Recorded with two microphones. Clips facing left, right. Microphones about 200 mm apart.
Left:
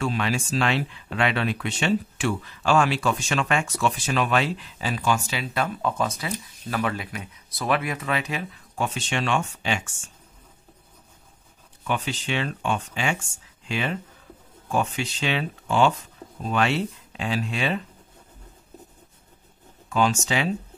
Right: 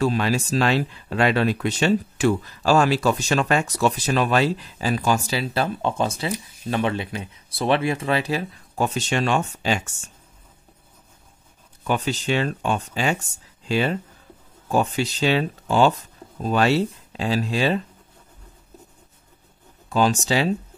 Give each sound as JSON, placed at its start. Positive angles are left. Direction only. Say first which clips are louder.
{"t": 0.0, "sound": "speech", "louder": "right 4 dB", "side_deg": -40}
{"t": 11.8, "sound": "speech", "louder": "right 4 dB", "side_deg": -40}
{"t": 19.9, "sound": "speech", "louder": "right 3 dB", "side_deg": -35}